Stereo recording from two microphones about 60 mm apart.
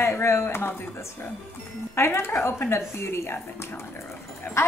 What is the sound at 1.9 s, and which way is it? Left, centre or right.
Speech, left.